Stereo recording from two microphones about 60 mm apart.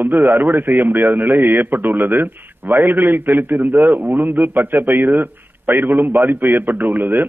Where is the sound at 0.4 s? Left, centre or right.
Right.